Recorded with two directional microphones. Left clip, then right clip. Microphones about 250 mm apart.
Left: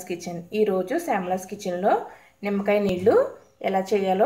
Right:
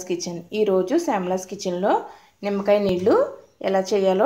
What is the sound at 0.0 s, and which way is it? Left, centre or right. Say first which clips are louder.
A woman's voice: right 4 dB; centre.